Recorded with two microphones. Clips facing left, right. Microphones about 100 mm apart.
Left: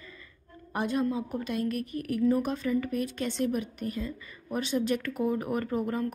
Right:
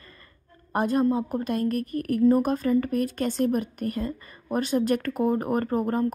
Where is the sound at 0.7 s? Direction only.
40° right (ahead or behind).